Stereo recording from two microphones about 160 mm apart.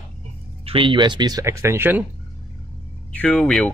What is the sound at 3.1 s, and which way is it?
Speech, 5° left (ahead or behind).